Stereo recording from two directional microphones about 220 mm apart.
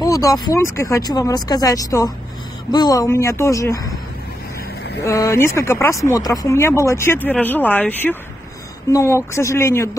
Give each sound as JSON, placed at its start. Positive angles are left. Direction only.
{"t": 0.0, "sound": "speech", "side_deg": 15}
{"t": 5.0, "sound": "speech", "side_deg": 15}